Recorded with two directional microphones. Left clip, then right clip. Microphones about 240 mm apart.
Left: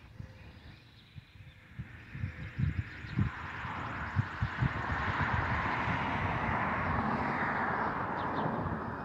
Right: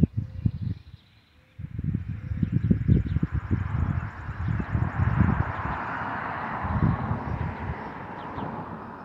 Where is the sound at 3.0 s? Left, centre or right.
Right; by 6.7 s centre.